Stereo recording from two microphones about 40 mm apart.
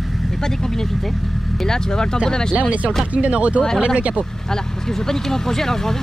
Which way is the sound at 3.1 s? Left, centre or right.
Right.